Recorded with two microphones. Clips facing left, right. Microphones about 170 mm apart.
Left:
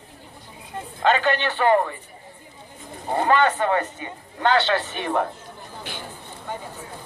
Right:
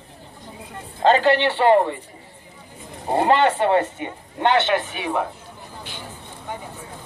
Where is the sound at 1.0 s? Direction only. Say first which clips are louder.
Right 4 dB; 30° right (ahead or behind).